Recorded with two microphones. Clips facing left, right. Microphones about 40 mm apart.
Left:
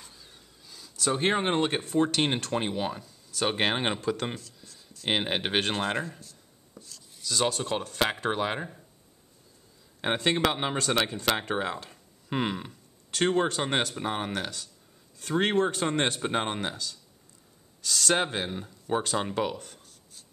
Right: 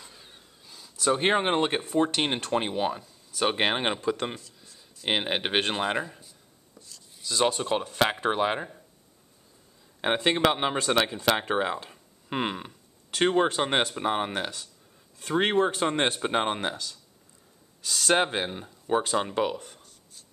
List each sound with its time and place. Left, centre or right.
0.7 s speech: centre
6.8 s chopping: centre
7.2 s speech: centre
10.0 s speech: centre
17.8 s speech: right
19.3 s a sound: centre